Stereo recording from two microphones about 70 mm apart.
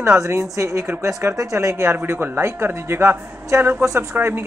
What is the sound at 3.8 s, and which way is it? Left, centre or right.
Speech, right.